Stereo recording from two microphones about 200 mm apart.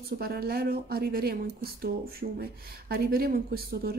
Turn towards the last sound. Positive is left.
turn(degrees=-50)  # may be behind; listen again after turning